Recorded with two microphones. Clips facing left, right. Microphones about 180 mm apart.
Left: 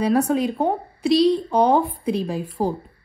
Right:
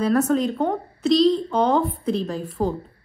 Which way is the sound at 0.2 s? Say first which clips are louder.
Even; 15° left (ahead or behind).